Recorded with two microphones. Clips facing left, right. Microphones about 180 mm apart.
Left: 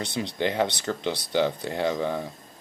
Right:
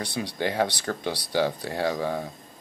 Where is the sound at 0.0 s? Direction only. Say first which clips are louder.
Left 1 dB; 25° left (ahead or behind).